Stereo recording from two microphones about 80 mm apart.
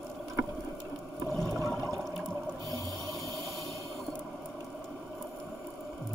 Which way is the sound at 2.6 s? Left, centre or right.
Right.